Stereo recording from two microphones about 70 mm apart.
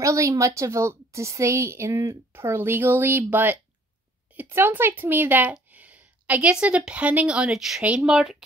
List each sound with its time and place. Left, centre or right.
0.0 s a woman's voice: right; by 8.5 s centre